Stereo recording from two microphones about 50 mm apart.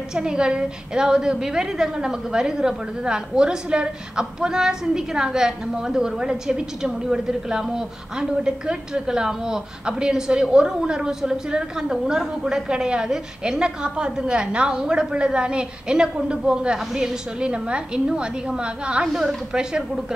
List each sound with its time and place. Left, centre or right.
0.1 s a woman's voice: centre